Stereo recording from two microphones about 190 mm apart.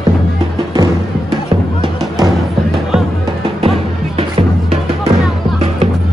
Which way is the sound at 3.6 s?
30° right (ahead or behind).